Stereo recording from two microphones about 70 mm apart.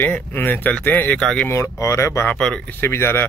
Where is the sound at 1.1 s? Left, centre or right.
Centre.